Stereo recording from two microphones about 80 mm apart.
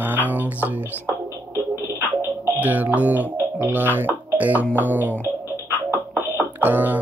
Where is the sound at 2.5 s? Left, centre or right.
Right.